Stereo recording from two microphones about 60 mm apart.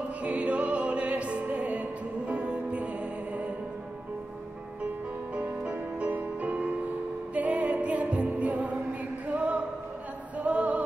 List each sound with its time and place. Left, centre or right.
0.2 s opera: right
5.3 s music: right
9.3 s a sound: right
10.4 s music: right